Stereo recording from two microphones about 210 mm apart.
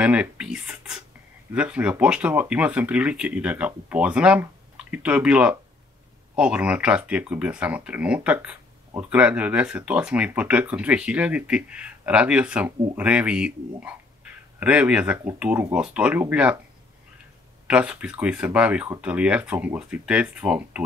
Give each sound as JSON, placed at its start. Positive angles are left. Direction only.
{"t": 0.0, "sound": "speech", "side_deg": -5}
{"t": 17.6, "sound": "speech", "side_deg": -5}